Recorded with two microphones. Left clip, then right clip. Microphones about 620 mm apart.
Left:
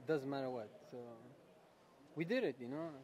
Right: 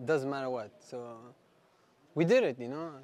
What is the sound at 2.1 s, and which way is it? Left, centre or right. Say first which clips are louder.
Speech: right 13 dB; right.